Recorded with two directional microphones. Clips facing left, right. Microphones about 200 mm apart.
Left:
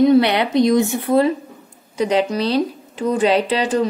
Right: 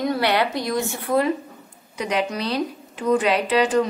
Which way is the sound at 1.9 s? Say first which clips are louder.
Left 6 dB; 30° left (ahead or behind).